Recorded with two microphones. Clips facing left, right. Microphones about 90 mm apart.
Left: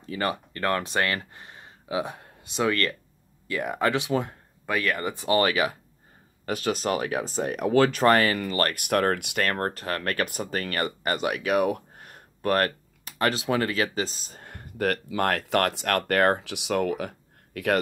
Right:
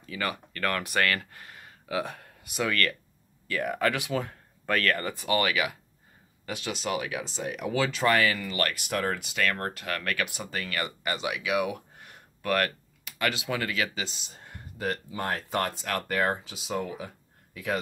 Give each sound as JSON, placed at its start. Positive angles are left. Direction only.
{"t": 0.0, "sound": "speech", "side_deg": 35}
{"t": 4.6, "sound": "speech", "side_deg": 10}
{"t": 6.4, "sound": "speech", "side_deg": 45}
{"t": 8.8, "sound": "speech", "side_deg": 55}
{"t": 9.4, "sound": "speech", "side_deg": 45}